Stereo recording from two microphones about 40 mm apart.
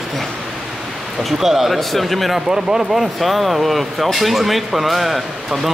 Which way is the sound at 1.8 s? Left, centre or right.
Centre.